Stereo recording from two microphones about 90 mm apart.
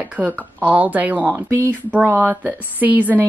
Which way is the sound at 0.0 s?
15° right (ahead or behind).